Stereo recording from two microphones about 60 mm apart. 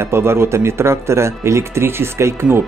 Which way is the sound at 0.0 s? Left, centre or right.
Right.